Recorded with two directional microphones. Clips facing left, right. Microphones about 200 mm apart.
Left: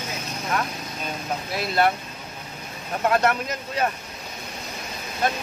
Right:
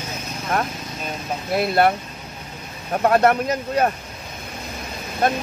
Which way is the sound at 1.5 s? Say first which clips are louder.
Right 5 dB; 55° right (ahead or behind).